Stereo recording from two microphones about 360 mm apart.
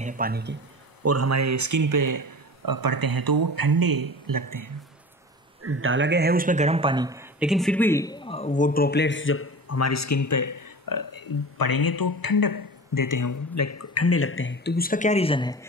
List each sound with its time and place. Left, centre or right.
0.0 s speech: right
1.0 s speech: right
5.6 s a man's voice: right; by 15.6 s centre